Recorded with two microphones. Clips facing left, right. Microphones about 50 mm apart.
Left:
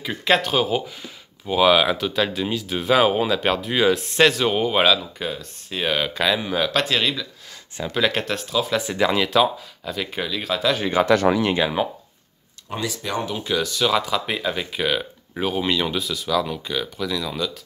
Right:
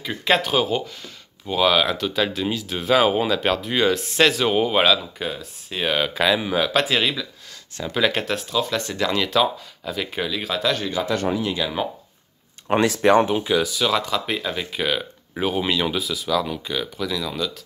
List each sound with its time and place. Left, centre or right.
0.0 s speech: centre
11.1 s speech: left
11.8 s speech: centre
12.6 s speech: right
13.4 s speech: centre